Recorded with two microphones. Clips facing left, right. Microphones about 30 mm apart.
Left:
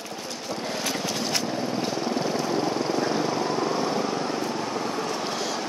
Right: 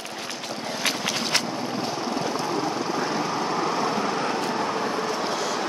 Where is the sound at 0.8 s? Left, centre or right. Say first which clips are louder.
Right 5 dB; right.